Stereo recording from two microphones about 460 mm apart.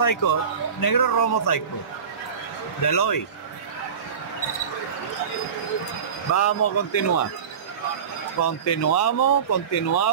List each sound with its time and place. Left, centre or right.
0.0 s speech: left
2.8 s speech: left
6.3 s speech: left
8.4 s speech: left